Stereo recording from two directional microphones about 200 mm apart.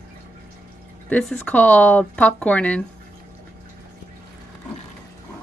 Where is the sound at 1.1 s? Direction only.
5° left (ahead or behind).